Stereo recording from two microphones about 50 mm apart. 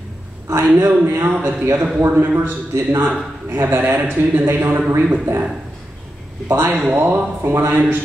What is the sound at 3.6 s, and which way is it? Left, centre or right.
Speech, right.